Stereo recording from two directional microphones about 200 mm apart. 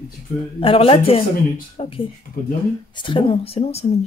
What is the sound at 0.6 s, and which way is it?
Speech, 30° left (ahead or behind).